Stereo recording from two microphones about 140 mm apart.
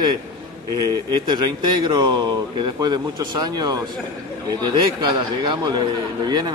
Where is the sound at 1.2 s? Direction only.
30° right (ahead or behind).